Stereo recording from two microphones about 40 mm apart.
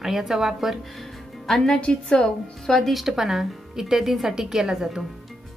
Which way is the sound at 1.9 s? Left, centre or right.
Centre.